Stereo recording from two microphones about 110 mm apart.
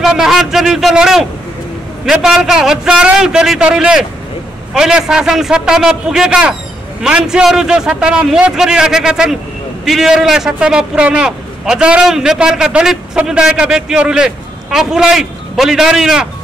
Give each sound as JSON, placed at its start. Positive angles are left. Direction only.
{"t": 0.0, "sound": "a man's voice", "side_deg": -5}